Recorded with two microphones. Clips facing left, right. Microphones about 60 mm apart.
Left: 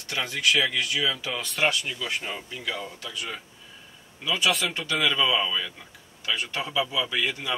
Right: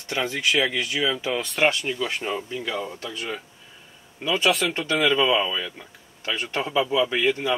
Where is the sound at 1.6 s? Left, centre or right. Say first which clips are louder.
Right 3 dB; right.